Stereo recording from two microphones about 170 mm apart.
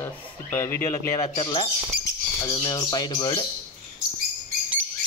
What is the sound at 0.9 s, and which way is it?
Speech, 30° left (ahead or behind).